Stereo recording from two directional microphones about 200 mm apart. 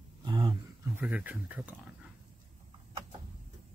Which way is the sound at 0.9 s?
5° right (ahead or behind).